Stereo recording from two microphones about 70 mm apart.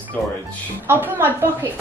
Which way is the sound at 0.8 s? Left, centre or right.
Right.